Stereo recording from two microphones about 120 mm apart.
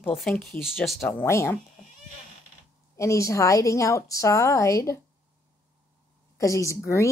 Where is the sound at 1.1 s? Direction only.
20° left (ahead or behind).